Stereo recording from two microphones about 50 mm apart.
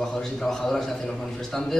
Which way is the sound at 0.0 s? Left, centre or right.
Centre.